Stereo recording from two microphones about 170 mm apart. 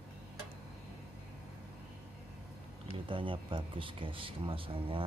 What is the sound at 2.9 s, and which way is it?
Speech, 30° right (ahead or behind).